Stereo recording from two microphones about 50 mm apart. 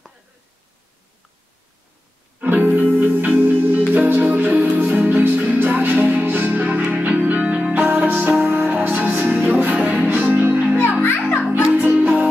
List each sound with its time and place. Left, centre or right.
2.4 s music: right
11.0 s music: left
11.7 s music: right
12.0 s music: right